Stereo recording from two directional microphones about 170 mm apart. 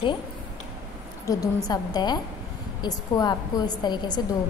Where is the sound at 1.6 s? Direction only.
20° left (ahead or behind).